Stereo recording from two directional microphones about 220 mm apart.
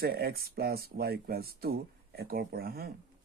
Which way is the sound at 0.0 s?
45° right (ahead or behind).